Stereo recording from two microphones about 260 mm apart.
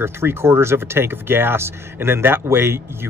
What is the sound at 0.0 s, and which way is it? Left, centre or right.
Speech, centre.